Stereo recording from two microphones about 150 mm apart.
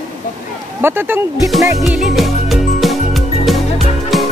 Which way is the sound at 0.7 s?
15° right (ahead or behind).